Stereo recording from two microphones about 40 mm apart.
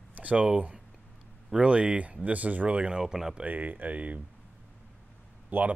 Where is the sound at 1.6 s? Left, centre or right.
Right.